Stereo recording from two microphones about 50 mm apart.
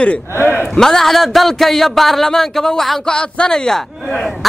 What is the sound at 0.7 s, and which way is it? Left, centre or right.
Speech, centre.